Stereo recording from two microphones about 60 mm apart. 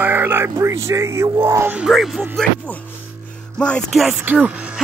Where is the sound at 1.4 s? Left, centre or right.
Right.